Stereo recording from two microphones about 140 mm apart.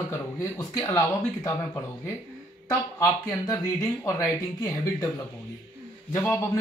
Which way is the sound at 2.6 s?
20° left (ahead or behind).